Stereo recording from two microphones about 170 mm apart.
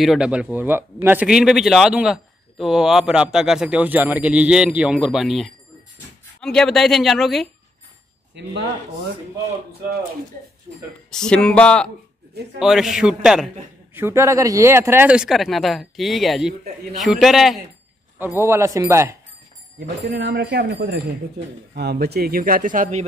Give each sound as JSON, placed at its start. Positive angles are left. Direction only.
{"t": 0.0, "sound": "a man's voice", "side_deg": -5}
{"t": 8.4, "sound": "speech", "side_deg": -90}
{"t": 11.1, "sound": "a man's voice", "side_deg": 5}
{"t": 13.9, "sound": "a man's voice", "side_deg": -15}
{"t": 18.2, "sound": "speech", "side_deg": -15}
{"t": 20.1, "sound": "speech", "side_deg": -75}
{"t": 21.7, "sound": "speech", "side_deg": -70}